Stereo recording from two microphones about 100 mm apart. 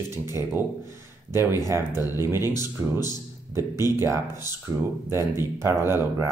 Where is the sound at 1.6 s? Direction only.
30° right (ahead or behind).